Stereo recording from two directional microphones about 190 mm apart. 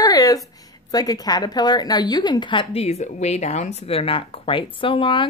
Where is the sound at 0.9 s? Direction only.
20° left (ahead or behind).